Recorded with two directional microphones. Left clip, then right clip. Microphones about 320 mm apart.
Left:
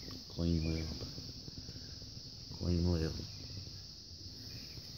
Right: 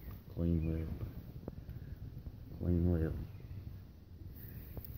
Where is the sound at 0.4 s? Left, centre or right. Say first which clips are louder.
Even; centre.